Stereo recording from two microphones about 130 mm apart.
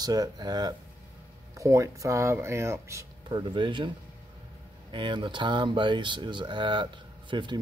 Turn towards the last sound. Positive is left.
turn(degrees=-35)  # may be behind; listen again after turning